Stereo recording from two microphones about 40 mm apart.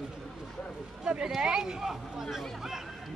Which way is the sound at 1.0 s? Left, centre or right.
Centre.